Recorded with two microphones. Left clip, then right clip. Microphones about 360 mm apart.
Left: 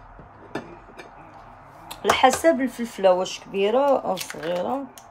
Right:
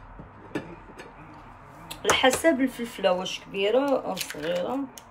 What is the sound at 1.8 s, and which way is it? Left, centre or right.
Speech, left.